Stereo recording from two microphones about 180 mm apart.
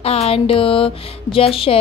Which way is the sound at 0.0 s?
35° left (ahead or behind).